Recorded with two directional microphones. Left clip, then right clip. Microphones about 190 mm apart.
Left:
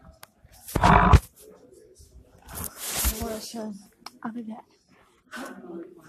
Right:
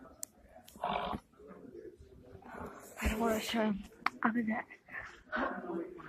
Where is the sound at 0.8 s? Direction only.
35° left (ahead or behind).